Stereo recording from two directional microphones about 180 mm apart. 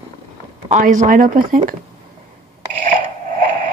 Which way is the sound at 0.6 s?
45° right (ahead or behind).